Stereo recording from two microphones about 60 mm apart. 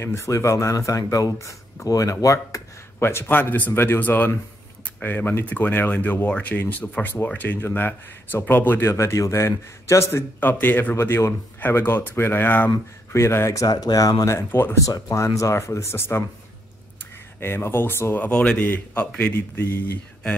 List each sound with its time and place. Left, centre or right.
0.0 s speech: left
3.0 s speech: left
8.8 s a man's voice: left
10.4 s speech: left
13.1 s a man's voice: left
13.6 s speech: left
14.5 s speech: left
14.9 s speech: left
17.4 s speech: left
18.1 s speech: left